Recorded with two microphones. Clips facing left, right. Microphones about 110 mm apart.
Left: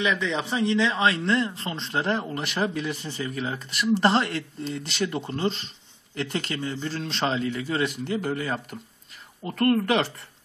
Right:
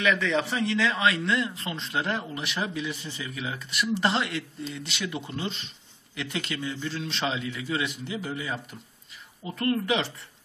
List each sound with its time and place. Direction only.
0.0 s a man's voice: 20° left (ahead or behind); by 10.0 s 55° left (ahead or behind)